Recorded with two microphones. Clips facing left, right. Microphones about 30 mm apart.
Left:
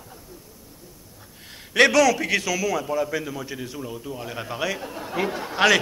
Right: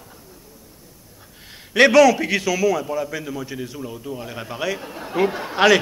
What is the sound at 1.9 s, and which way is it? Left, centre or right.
Speech, centre.